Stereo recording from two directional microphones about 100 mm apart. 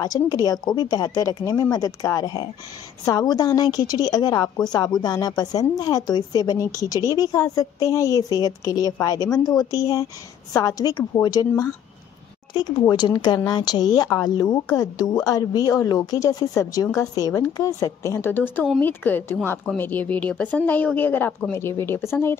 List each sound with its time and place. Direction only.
0.0 s a woman's voice: 40° left (ahead or behind)